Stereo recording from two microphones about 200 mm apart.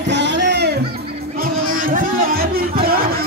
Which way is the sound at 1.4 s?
45° right (ahead or behind).